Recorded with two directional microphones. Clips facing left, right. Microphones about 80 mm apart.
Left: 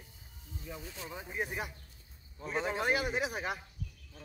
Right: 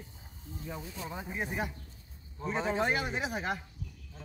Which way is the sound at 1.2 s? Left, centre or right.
Centre.